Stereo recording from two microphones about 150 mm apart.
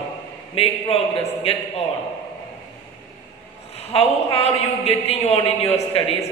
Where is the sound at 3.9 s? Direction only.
40° left (ahead or behind).